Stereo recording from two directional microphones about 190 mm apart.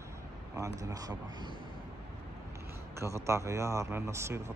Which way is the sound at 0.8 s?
20° right (ahead or behind).